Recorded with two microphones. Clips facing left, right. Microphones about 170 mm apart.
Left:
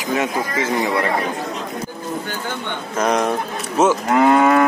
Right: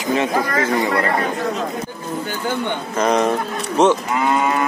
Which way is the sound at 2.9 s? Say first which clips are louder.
Right 1 dB; centre (ahead or behind).